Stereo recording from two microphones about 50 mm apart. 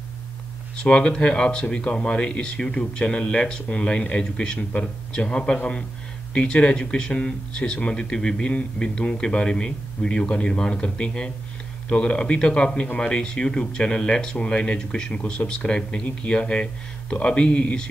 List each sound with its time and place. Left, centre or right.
0.8 s speech: centre